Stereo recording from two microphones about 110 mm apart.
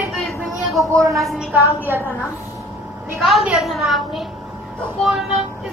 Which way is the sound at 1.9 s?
20° right (ahead or behind).